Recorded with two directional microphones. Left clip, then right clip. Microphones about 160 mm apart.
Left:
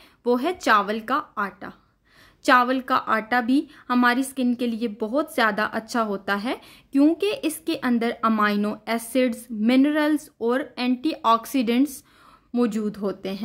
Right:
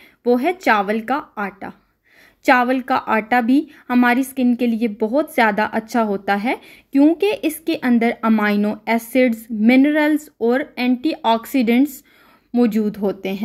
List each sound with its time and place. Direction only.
0.2 s a woman's voice: 10° right (ahead or behind)
7.0 s speech: centre (ahead or behind)
7.2 s a woman's voice: 10° right (ahead or behind)